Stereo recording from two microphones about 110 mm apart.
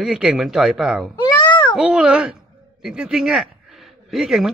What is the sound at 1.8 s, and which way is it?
Speech, 10° right (ahead or behind).